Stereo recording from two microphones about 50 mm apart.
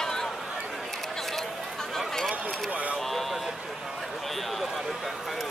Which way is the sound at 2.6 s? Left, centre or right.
Right.